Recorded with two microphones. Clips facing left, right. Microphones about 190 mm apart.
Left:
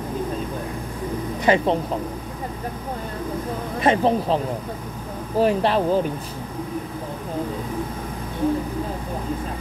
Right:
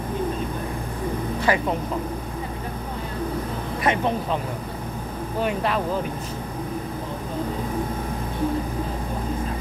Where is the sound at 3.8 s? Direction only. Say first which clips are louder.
Left 5 dB; 30° left (ahead or behind).